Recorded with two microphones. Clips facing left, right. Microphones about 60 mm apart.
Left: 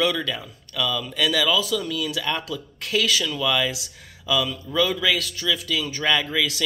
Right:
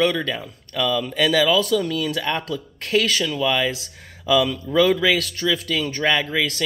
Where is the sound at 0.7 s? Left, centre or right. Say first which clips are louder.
Right 4 dB; right.